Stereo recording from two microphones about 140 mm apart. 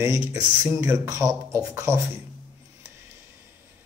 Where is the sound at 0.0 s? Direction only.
20° right (ahead or behind).